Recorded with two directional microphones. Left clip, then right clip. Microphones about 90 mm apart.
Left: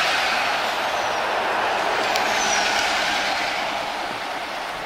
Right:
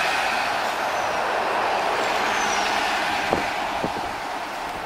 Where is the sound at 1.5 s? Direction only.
25° left (ahead or behind).